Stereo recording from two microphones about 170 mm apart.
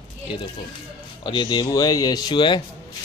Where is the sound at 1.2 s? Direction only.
30° left (ahead or behind).